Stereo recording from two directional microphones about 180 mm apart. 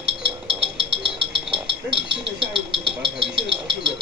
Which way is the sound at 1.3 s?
5° right (ahead or behind).